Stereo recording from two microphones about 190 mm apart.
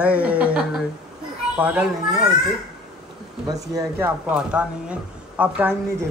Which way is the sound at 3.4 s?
20° right (ahead or behind).